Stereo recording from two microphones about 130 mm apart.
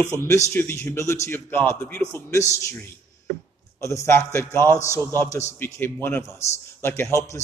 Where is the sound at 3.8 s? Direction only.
20° left (ahead or behind).